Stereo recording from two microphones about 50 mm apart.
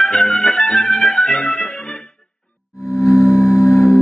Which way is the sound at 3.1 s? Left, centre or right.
Right.